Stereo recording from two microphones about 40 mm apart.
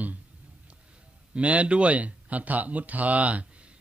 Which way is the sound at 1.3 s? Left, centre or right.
Right.